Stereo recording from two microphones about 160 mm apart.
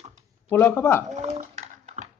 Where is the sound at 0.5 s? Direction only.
15° left (ahead or behind).